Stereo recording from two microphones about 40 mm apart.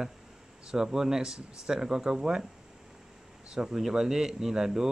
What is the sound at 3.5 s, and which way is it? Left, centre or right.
Speech, centre.